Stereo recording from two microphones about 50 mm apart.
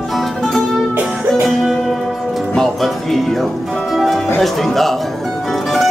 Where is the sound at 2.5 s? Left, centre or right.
Centre.